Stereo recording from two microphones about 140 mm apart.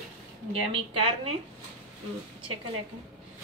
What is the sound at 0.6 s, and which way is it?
Speech, 40° right (ahead or behind).